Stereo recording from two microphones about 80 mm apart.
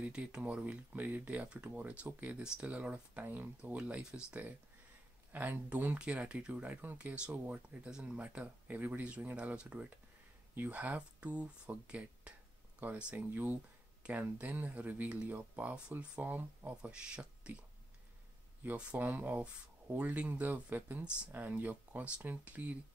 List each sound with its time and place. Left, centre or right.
0.0 s speech: centre